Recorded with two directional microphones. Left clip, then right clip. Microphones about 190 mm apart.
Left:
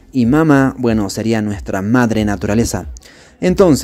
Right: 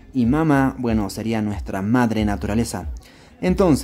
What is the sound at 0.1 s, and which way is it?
Speech, 30° left (ahead or behind).